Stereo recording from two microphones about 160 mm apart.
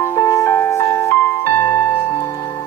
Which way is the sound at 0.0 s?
20° left (ahead or behind).